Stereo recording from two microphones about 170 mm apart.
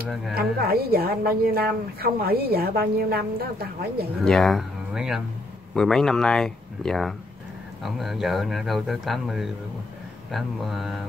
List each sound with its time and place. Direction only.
0.3 s a woman's voice: 65° right (ahead or behind)
4.2 s speech: 5° left (ahead or behind)